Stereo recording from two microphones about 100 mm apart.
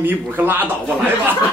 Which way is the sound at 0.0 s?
20° right (ahead or behind).